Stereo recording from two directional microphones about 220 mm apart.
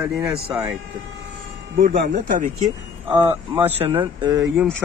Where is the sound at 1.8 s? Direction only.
35° right (ahead or behind).